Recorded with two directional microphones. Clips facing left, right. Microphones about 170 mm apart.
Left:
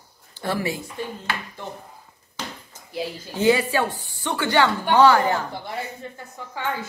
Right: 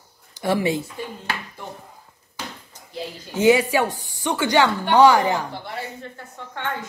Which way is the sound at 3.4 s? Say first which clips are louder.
Right 3 dB; 15° right (ahead or behind).